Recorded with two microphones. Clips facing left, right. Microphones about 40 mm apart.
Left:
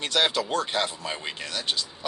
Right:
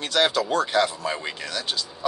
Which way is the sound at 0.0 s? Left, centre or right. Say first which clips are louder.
Right 2 dB; centre.